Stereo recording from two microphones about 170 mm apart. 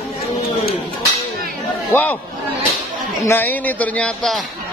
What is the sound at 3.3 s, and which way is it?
A man's voice, 10° left (ahead or behind).